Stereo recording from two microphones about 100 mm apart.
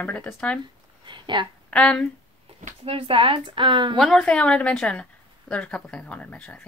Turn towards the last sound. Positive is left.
turn(degrees=20)  # may be behind; listen again after turning